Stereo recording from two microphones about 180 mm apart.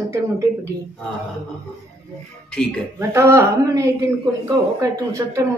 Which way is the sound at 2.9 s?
15° right (ahead or behind).